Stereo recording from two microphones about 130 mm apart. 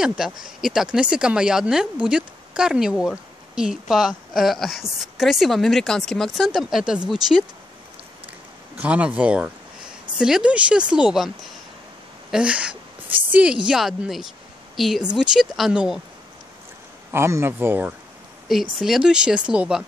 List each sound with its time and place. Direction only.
0.0 s speech: 5° right (ahead or behind)
8.7 s speech: 10° right (ahead or behind)
17.1 s speech: 20° right (ahead or behind)
18.5 s speech: centre (ahead or behind)